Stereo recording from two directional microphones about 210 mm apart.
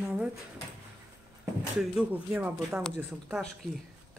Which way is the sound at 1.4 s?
5° right (ahead or behind).